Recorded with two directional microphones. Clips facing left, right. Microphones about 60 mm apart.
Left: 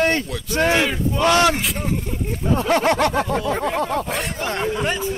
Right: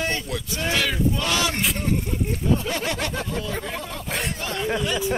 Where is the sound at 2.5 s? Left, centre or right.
Left.